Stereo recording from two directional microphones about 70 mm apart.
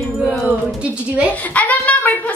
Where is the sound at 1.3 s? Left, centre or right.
Left.